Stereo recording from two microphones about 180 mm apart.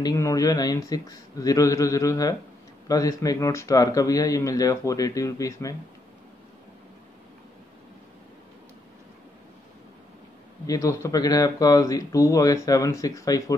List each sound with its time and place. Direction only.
0.0 s speech: 20° left (ahead or behind)
10.7 s speech: 15° left (ahead or behind)